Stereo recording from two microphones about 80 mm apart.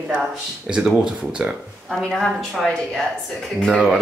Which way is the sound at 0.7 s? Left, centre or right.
Centre.